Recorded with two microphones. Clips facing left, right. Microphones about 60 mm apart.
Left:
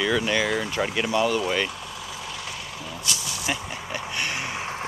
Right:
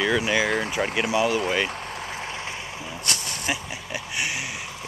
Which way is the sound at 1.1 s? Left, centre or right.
Centre.